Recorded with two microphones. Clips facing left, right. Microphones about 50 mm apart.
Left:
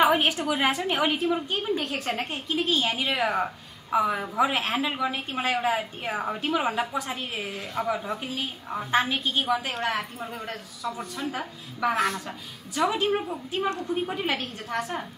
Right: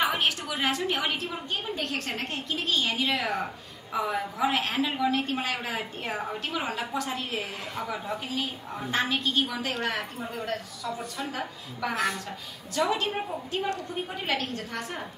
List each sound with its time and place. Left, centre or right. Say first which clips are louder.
0.1 s a woman's voice: left 5 dB; centre